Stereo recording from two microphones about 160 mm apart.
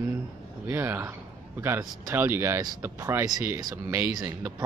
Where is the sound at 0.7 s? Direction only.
15° right (ahead or behind).